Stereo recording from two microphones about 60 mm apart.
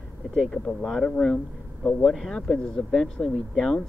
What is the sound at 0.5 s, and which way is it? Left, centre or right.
Speech, centre.